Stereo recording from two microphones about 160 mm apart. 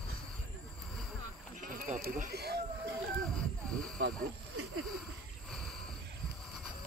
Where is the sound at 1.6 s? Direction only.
55° right (ahead or behind); by 2.6 s 90° right.